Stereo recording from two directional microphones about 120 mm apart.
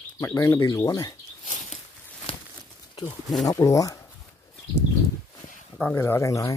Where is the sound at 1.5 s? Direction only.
75° left (ahead or behind).